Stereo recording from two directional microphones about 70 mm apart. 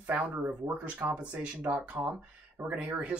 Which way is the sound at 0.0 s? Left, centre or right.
Right.